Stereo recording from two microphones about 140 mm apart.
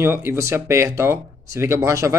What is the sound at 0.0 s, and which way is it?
A man's voice, 15° right (ahead or behind).